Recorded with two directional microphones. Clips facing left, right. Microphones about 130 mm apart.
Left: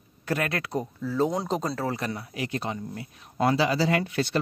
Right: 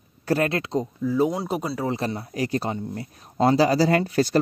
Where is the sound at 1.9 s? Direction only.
30° right (ahead or behind).